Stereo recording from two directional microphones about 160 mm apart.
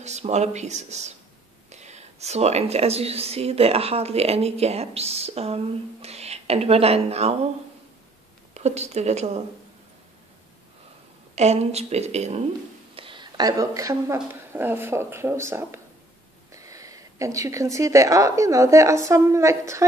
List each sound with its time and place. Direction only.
0.0 s a woman's voice: 45° right (ahead or behind)
8.5 s a woman's voice: 45° right (ahead or behind)
11.3 s a woman's voice: 45° right (ahead or behind)
12.9 s a woman's voice: 30° right (ahead or behind)